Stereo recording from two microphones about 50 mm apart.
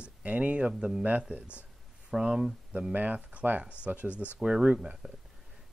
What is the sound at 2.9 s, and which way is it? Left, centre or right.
A man's voice, right.